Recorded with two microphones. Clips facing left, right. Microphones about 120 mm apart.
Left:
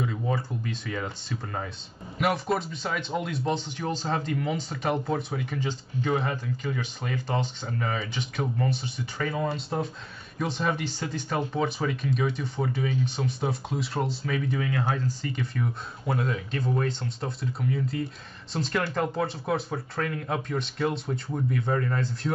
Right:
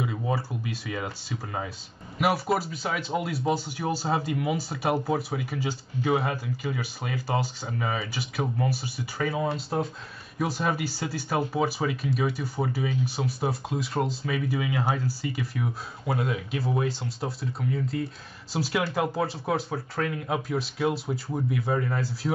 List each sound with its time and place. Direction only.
0.0 s speech: 10° right (ahead or behind)